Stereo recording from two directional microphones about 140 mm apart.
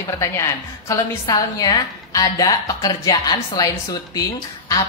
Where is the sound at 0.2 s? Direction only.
20° left (ahead or behind).